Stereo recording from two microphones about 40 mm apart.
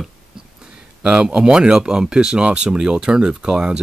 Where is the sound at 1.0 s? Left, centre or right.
Centre.